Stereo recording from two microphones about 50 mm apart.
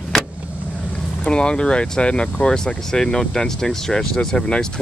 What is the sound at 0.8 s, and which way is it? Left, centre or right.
Speech, left.